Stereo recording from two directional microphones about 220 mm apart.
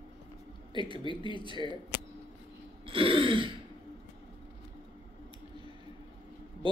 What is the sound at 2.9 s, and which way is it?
Throat clearing, 25° right (ahead or behind).